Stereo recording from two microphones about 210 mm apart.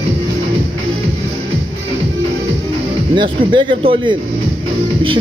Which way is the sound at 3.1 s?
25° right (ahead or behind).